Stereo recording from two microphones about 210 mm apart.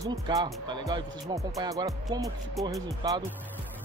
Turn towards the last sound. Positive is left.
turn(degrees=-15)  # may be behind; listen again after turning